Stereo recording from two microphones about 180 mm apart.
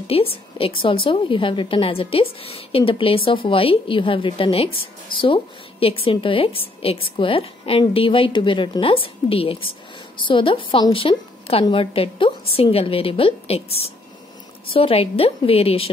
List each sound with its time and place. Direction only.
0.1 s a woman's voice: 30° left (ahead or behind)